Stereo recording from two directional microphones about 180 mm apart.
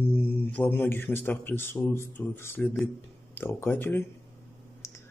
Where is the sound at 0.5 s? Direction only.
10° left (ahead or behind).